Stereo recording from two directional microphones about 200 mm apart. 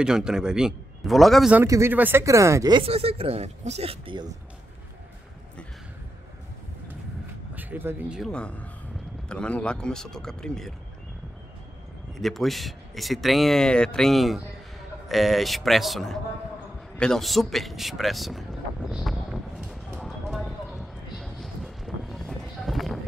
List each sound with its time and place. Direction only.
0.0 s speech: 5° right (ahead or behind)
1.6 s speech: 10° right (ahead or behind)
2.8 s speech: 30° right (ahead or behind)
7.5 s speech: 10° right (ahead or behind)
12.2 s speech: centre (ahead or behind)
20.0 s vehicle: centre (ahead or behind)